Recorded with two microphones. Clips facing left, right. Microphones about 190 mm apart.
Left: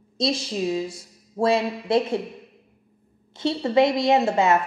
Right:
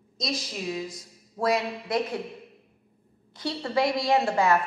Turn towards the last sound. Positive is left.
turn(degrees=20)  # may be behind; listen again after turning